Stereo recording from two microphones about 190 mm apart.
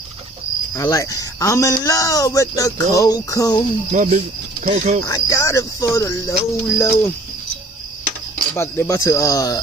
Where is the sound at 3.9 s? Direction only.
40° right (ahead or behind).